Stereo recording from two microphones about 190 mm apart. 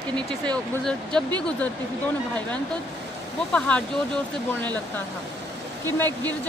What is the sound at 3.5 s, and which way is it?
Speech, 5° left (ahead or behind).